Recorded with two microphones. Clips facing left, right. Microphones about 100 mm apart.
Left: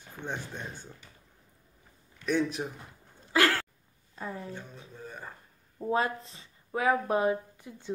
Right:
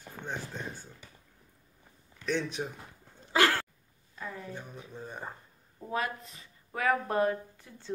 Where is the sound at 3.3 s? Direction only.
20° right (ahead or behind).